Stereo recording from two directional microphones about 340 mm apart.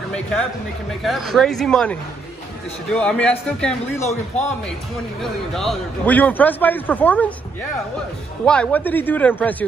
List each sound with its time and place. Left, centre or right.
1.0 s a man's voice: centre
4.0 s a man's voice: centre
5.2 s a man's voice: centre
8.5 s a man's voice: centre